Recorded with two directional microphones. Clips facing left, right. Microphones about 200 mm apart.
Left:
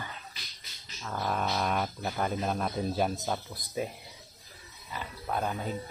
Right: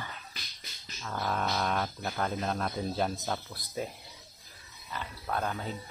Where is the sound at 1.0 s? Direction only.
5° left (ahead or behind).